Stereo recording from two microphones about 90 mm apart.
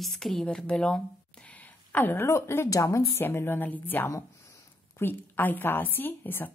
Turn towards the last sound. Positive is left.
turn(degrees=20)  # may be behind; listen again after turning